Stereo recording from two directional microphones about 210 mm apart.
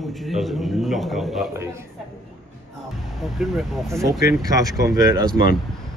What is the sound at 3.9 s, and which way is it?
A man's voice, 15° right (ahead or behind).